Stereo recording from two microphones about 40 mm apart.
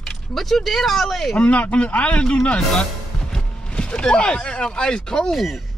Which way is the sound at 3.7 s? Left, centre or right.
Left.